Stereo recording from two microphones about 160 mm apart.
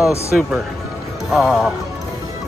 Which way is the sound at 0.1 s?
15° left (ahead or behind).